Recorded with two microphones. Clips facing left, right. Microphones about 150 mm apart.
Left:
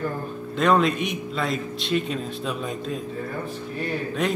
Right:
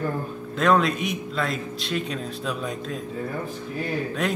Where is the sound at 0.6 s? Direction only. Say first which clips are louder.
Left 1 dB; centre (ahead or behind).